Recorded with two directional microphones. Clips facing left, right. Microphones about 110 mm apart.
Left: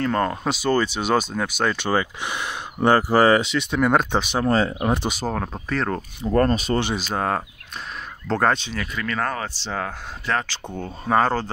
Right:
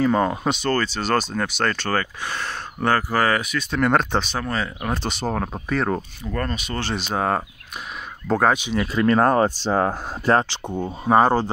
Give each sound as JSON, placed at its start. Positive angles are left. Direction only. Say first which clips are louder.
{"t": 0.0, "sound": "speech", "louder": "right 3 dB", "side_deg": -5}
{"t": 0.6, "sound": "speech", "louder": "left 2 dB", "side_deg": 15}
{"t": 3.7, "sound": "speech", "louder": "even", "side_deg": 5}
{"t": 4.5, "sound": "speech", "louder": "left 6 dB", "side_deg": 30}
{"t": 5.0, "sound": "speech", "louder": "even", "side_deg": 5}
{"t": 6.2, "sound": "speech", "louder": "left 13 dB", "side_deg": 35}
{"t": 7.0, "sound": "speech", "louder": "right 1 dB", "side_deg": 0}
{"t": 8.9, "sound": "speech", "louder": "right 10 dB", "side_deg": -35}
{"t": 10.5, "sound": "speech", "louder": "right 4 dB", "side_deg": -15}